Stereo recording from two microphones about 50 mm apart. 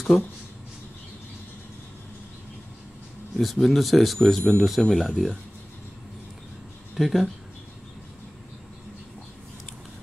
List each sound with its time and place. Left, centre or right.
0.1 s speech: centre
3.3 s speech: centre
7.0 s speech: centre